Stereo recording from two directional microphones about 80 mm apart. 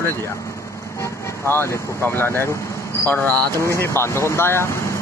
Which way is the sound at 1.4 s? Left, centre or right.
Left.